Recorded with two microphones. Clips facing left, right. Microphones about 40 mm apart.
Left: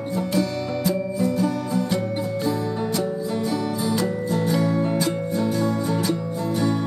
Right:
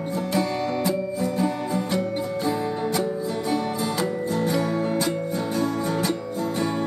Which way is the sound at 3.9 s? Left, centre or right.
Right.